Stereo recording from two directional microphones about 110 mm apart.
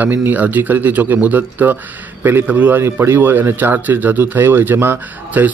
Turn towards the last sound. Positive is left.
turn(degrees=-20)  # may be behind; listen again after turning